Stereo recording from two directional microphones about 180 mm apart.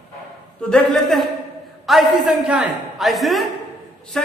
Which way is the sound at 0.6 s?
5° left (ahead or behind).